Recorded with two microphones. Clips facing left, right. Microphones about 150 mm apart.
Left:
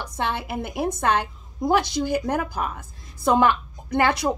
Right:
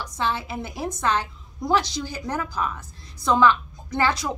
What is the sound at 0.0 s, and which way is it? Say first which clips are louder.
A woman's voice: even; 55° left (ahead or behind).